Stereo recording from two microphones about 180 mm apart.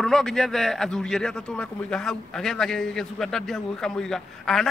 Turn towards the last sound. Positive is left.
turn(degrees=0)  # may be behind; listen again after turning